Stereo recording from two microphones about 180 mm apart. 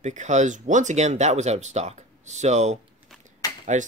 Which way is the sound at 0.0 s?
40° right (ahead or behind).